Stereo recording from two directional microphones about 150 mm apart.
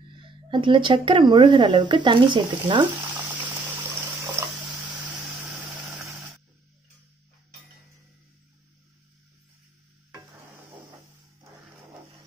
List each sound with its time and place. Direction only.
0.2 s speech: 35° right (ahead or behind)
5.9 s vehicle: centre (ahead or behind)